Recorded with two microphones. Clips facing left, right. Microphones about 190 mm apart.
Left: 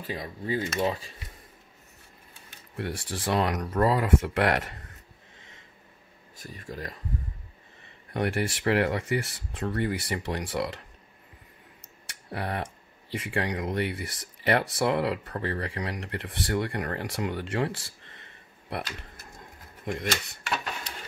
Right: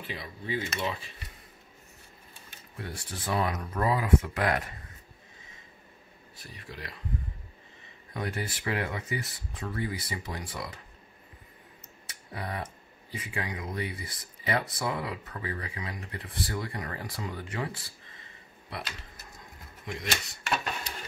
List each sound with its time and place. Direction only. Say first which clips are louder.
0.0 s speech: left 5 dB; 40° left (ahead or behind)
2.8 s speech: left 7 dB; 85° left
6.3 s speech: left 6 dB; 45° left (ahead or behind)
8.1 s speech: left 6 dB; 70° left (ahead or behind)
11.8 s a sound: even; 70° left (ahead or behind)
13.1 s speech: left 6 dB; 75° left (ahead or behind)
18.7 s speech: left 5 dB; 60° left (ahead or behind)